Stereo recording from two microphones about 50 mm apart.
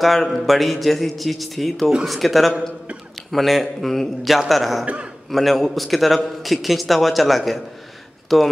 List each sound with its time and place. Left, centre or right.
0.0 s a man's voice: centre
4.8 s a man's voice: right
5.3 s a man's voice: centre